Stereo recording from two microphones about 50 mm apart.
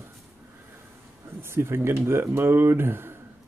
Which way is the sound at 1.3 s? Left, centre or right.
Right.